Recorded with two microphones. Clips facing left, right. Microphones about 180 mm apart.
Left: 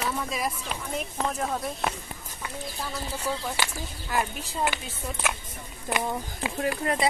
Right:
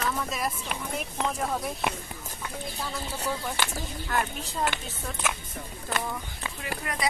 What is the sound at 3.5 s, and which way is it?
Speech, 5° left (ahead or behind).